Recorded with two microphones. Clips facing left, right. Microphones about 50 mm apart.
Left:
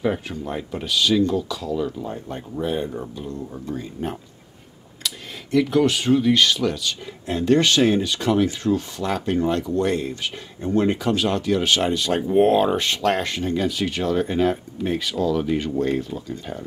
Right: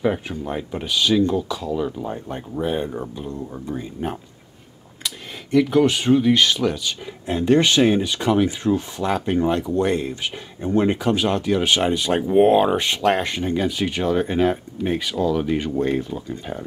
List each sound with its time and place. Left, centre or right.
0.0 s speech: centre
5.0 s speech: centre